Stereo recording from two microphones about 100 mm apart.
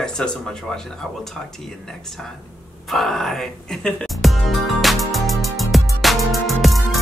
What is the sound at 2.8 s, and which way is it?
Music, centre (ahead or behind).